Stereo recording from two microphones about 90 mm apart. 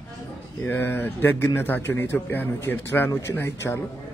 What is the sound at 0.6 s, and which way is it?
A man's voice, 25° left (ahead or behind).